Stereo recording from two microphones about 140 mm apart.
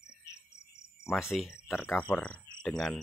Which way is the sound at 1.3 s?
Centre (ahead or behind).